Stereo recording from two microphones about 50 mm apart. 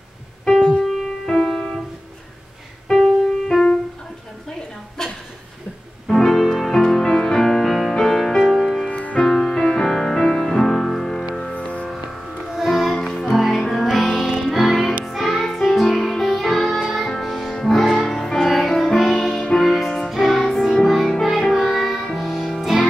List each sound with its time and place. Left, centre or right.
0.5 s music: centre
2.9 s music: centre
4.5 s a sound: centre
6.0 s music: centre
11.5 s music: left
11.9 s music: centre